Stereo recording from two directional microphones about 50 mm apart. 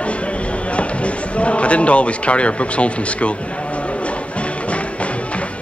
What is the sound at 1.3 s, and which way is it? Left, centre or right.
Speech, left.